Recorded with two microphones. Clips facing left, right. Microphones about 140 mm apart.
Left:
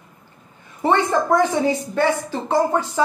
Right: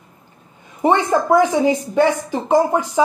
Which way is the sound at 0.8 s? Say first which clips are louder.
Right 2 dB; 15° right (ahead or behind).